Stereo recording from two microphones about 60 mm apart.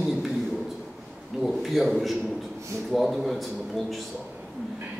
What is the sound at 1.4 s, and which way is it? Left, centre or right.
A man's voice, centre.